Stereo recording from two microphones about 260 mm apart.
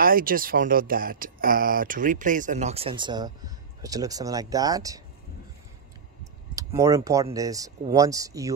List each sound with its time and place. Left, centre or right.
0.0 s speech: right; by 5.0 s centre
6.5 s speech: centre